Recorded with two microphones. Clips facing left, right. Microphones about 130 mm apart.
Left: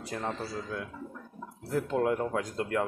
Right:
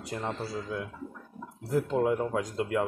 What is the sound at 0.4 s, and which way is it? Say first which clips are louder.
Speech: right 2 dB; 10° right (ahead or behind).